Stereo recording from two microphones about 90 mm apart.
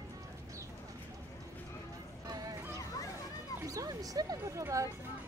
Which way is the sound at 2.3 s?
45° right (ahead or behind).